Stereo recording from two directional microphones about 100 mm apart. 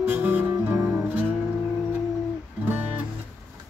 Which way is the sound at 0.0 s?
20° right (ahead or behind).